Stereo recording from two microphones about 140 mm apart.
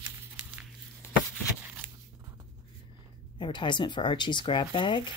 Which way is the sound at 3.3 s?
35° left (ahead or behind).